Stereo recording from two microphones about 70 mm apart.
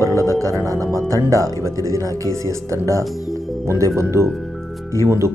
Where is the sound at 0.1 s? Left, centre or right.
Right.